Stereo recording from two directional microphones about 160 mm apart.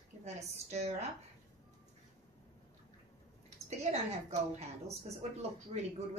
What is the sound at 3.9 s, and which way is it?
Speech, 40° right (ahead or behind).